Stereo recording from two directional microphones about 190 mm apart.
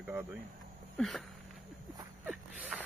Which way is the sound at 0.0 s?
10° right (ahead or behind).